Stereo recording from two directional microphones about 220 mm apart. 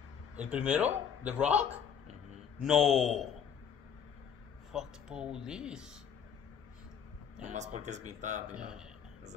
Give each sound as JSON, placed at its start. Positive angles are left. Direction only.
{"t": 0.4, "sound": "a man's voice", "side_deg": -5}
{"t": 4.7, "sound": "a man's voice", "side_deg": -5}
{"t": 7.4, "sound": "speech", "side_deg": -30}
{"t": 8.5, "sound": "a man's voice", "side_deg": -5}